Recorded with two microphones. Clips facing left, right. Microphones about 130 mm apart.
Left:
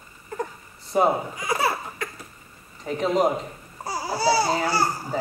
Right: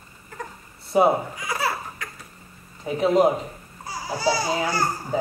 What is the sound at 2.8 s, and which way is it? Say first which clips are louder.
Speech: right 3 dB; 5° right (ahead or behind).